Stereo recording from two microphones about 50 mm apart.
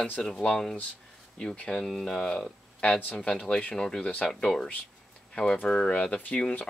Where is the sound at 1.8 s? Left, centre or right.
Centre.